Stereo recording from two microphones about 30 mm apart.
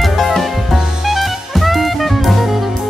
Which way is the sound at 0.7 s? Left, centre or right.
Centre.